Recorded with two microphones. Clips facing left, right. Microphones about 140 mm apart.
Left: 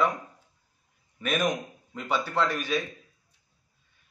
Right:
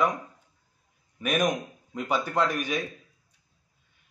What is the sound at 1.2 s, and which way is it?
A man's voice, 10° right (ahead or behind).